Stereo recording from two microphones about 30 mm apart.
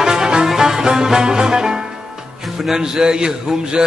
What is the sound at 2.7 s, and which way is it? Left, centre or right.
Speech, right.